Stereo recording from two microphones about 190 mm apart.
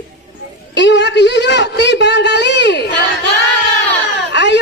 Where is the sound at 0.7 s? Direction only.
70° left (ahead or behind).